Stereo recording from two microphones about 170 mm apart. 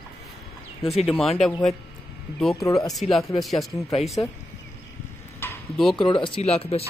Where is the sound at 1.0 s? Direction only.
5° left (ahead or behind).